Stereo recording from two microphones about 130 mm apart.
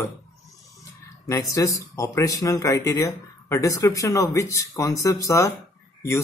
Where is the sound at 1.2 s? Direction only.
25° left (ahead or behind).